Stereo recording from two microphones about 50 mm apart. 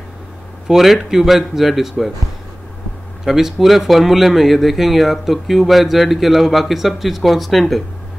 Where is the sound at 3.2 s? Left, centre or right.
Centre.